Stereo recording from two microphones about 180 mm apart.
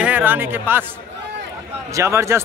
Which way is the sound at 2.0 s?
15° right (ahead or behind).